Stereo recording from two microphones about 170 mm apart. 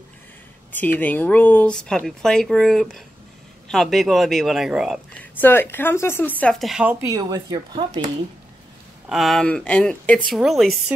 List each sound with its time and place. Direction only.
0.7 s speech: 10° left (ahead or behind)
5.2 s a woman's voice: 10° left (ahead or behind); by 7.0 s 5° right (ahead or behind)
7.1 s speech: 20° right (ahead or behind)
9.1 s speech: centre (ahead or behind)